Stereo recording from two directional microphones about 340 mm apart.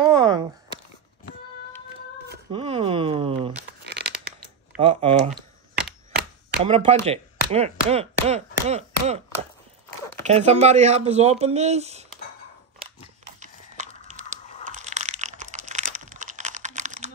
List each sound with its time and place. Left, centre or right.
0.0 s a sound: centre
2.5 s a sound: centre
3.8 s tearing: right
4.7 s speech: centre
6.1 s chop: right
6.7 s speech: centre
8.3 s chopping: centre
10.2 s speech: centre
13.4 s a sound: right